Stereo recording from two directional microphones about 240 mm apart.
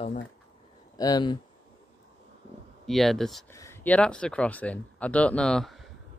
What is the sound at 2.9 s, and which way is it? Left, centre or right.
Speech, centre.